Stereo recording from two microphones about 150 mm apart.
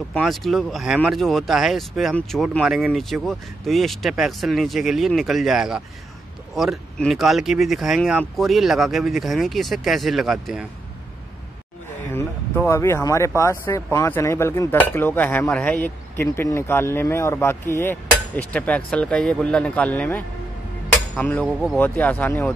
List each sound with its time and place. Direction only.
0.1 s speech: centre (ahead or behind)
12.1 s speech: 15° left (ahead or behind)
21.5 s speech: 5° right (ahead or behind)
21.7 s speech: 10° left (ahead or behind)